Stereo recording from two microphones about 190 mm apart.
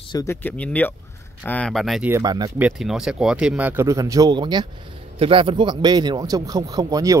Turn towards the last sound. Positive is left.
turn(degrees=-20)  # may be behind; listen again after turning